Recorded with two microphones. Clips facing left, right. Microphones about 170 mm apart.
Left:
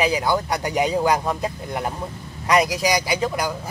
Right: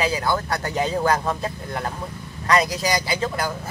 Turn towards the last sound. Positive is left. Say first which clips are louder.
# left 2 dB
turn(degrees=15)  # may be behind; listen again after turning